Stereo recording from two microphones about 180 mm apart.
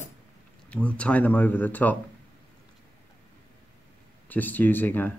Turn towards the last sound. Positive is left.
turn(degrees=10)  # may be behind; listen again after turning